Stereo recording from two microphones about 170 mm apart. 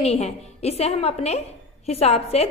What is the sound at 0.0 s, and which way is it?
A woman's voice, 40° left (ahead or behind).